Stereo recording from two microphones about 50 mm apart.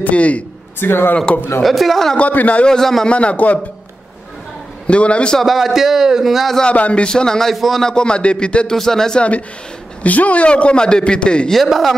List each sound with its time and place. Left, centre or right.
0.0 s a man's voice: left
0.7 s a man's voice: left
1.6 s speech: centre
2.1 s a man's voice: left
2.7 s speech: centre
3.1 s a man's voice: left
4.8 s a man's voice: left
5.4 s speech: centre
6.6 s speech: left
7.5 s speech: centre
7.8 s a man's voice: centre
8.7 s speech: centre
10.0 s a man's voice: left
11.5 s speech: centre